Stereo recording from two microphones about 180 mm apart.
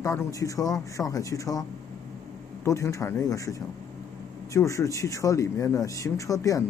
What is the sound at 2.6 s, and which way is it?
Speech, 15° left (ahead or behind).